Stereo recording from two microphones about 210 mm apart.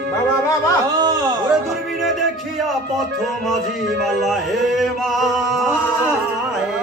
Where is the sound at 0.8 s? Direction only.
20° right (ahead or behind).